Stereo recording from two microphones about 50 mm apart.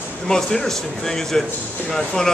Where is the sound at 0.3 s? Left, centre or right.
Centre.